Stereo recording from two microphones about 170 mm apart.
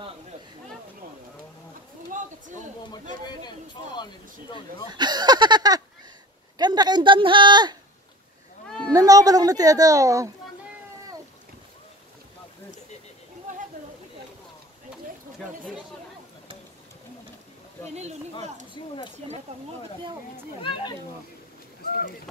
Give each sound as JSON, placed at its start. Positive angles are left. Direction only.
{"t": 3.3, "sound": "speech", "side_deg": 25}
{"t": 4.9, "sound": "speech", "side_deg": -25}
{"t": 8.6, "sound": "a sound", "side_deg": 5}
{"t": 8.9, "sound": "speech", "side_deg": -20}
{"t": 19.2, "sound": "speech", "side_deg": -30}